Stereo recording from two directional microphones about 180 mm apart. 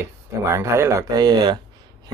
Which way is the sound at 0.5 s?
15° right (ahead or behind).